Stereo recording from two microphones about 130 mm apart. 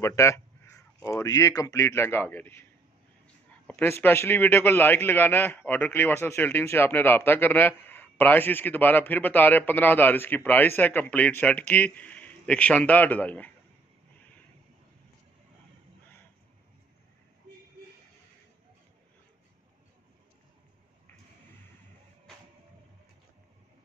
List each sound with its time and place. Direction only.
0.0 s a man's voice: 25° left (ahead or behind)
3.6 s a man's voice: 20° left (ahead or behind)